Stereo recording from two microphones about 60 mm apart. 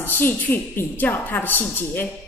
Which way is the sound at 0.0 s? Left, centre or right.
Left.